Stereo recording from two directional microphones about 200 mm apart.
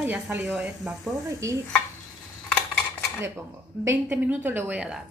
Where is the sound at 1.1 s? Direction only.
15° right (ahead or behind).